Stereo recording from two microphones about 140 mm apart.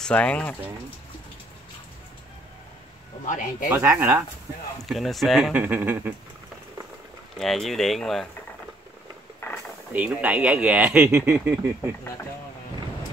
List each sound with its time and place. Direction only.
0.0 s speech: 10° left (ahead or behind)
3.3 s speech: 70° left (ahead or behind)
3.7 s speech: 20° right (ahead or behind)
4.8 s speech: centre (ahead or behind)
5.6 s speech: 15° right (ahead or behind)
7.3 s speech: centre (ahead or behind)
9.4 s a sound: 20° left (ahead or behind)
9.9 s speech: 10° right (ahead or behind)